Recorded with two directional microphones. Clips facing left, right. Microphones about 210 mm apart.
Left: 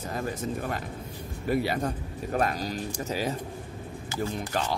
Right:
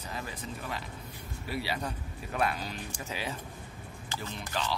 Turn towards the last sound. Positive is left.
turn(degrees=45)  # may be behind; listen again after turning